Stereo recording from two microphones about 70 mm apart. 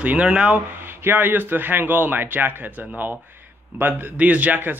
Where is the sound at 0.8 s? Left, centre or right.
Right.